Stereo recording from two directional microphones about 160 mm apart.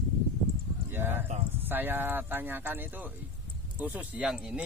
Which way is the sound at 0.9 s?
15° right (ahead or behind).